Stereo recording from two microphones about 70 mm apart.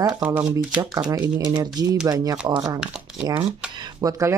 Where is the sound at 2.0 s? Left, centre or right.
Right.